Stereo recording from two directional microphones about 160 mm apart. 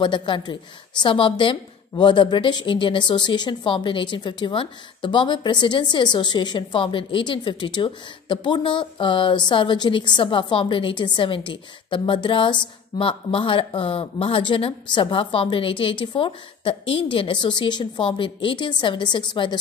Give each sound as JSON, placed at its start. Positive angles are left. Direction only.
{"t": 0.0, "sound": "a woman's voice", "side_deg": 30}